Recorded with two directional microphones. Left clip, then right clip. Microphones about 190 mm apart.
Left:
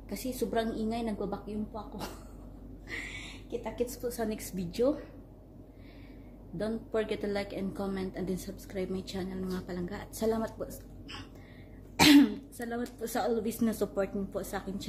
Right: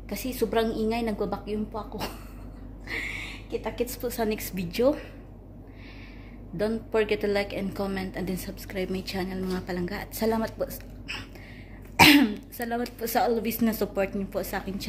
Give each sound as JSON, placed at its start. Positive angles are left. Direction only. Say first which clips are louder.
{"t": 0.1, "sound": "a woman's voice", "louder": "right 6 dB", "side_deg": -20}
{"t": 2.9, "sound": "a sound", "louder": "right 7 dB", "side_deg": -20}
{"t": 3.6, "sound": "a woman's voice", "louder": "right 3 dB", "side_deg": -15}
{"t": 6.6, "sound": "a woman's voice", "louder": "right 7 dB", "side_deg": -10}